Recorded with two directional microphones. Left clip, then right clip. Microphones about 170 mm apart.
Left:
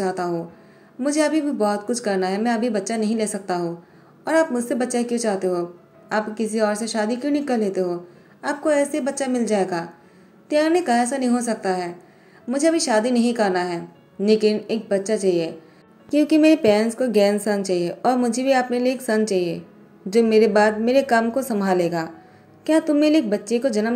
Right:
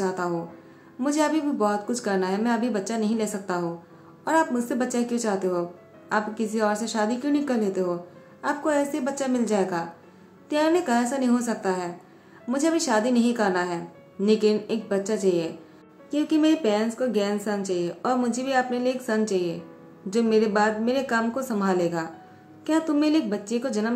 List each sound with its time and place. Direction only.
0.0 s a woman's voice: 10° left (ahead or behind)
16.1 s a woman's voice: 25° left (ahead or behind)